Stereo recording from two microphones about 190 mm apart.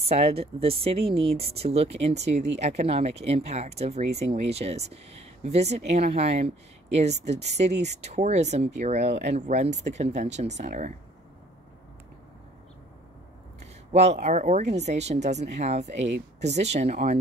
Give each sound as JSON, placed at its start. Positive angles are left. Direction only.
{"t": 0.0, "sound": "speech", "side_deg": -30}
{"t": 13.9, "sound": "speech", "side_deg": -35}